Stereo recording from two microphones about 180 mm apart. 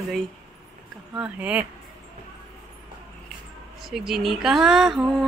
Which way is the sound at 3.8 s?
Centre (ahead or behind).